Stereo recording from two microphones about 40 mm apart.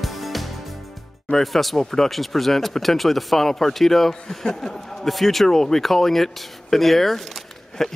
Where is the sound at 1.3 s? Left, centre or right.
Centre.